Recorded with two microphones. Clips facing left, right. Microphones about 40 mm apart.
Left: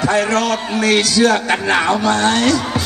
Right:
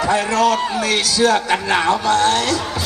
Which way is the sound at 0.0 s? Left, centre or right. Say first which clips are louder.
Even; left.